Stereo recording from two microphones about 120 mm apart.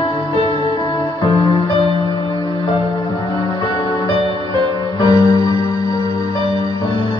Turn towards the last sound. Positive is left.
turn(degrees=-45)  # may be behind; listen again after turning